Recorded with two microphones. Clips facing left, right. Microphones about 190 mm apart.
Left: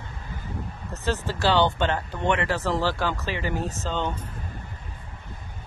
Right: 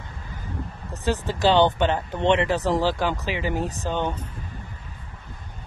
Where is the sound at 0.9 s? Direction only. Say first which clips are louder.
Right 2 dB; 15° right (ahead or behind).